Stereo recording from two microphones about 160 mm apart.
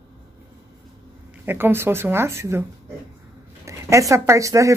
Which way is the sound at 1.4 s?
15° right (ahead or behind).